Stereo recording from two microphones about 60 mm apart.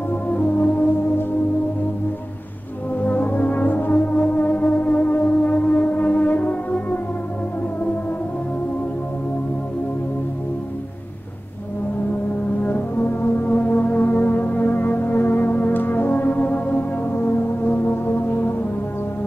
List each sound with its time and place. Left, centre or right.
0.1 s music: left
3.0 s brass instrument: left
5.3 s music: left
12.6 s music: left